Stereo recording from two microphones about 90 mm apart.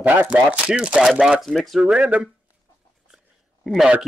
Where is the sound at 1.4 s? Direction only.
Centre (ahead or behind).